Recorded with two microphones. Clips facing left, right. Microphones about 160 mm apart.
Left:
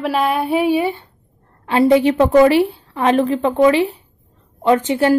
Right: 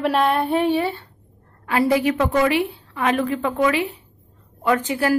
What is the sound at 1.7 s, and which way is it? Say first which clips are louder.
A woman's voice: left 6 dB; 25° left (ahead or behind).